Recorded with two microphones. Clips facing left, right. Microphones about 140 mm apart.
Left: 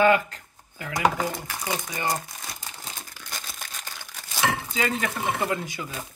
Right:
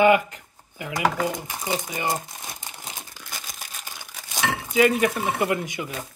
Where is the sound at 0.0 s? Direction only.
15° right (ahead or behind).